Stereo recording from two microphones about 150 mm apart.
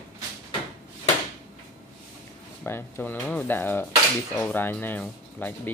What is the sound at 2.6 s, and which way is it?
Speech, 15° left (ahead or behind).